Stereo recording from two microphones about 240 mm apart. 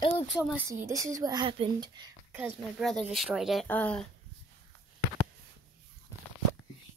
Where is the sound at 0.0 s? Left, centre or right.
Centre.